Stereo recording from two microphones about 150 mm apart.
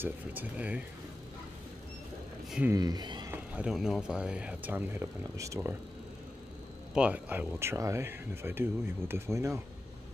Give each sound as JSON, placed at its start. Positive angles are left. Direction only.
{"t": 0.0, "sound": "speech", "side_deg": -10}
{"t": 2.7, "sound": "speech", "side_deg": -25}
{"t": 3.3, "sound": "speech", "side_deg": -5}
{"t": 6.9, "sound": "speech", "side_deg": -10}